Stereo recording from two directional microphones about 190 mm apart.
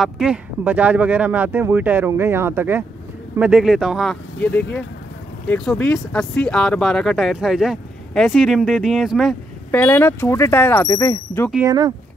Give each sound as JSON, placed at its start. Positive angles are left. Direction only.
{"t": 0.0, "sound": "speech", "side_deg": -5}
{"t": 9.7, "sound": "speech", "side_deg": 10}
{"t": 11.6, "sound": "speech", "side_deg": -20}